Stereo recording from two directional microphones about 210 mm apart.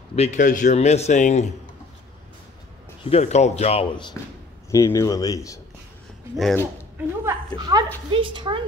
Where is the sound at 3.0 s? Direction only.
30° left (ahead or behind).